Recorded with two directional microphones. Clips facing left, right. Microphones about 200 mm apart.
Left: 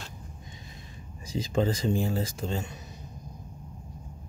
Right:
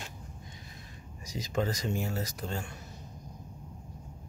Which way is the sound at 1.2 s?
30° left (ahead or behind).